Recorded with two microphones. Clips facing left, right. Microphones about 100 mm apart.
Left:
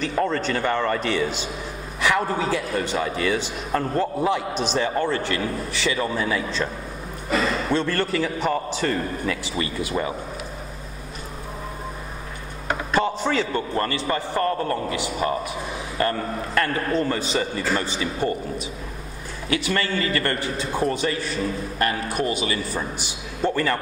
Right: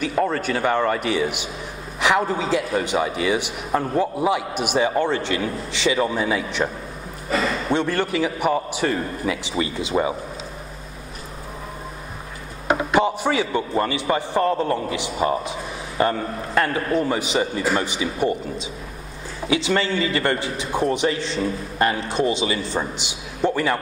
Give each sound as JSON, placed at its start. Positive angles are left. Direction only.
{"t": 0.0, "sound": "a man's voice", "side_deg": -10}
{"t": 12.6, "sound": "a man's voice", "side_deg": -15}